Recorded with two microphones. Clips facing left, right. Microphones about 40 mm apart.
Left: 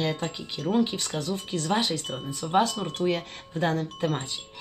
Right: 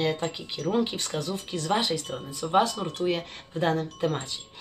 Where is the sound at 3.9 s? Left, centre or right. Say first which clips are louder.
Even; left.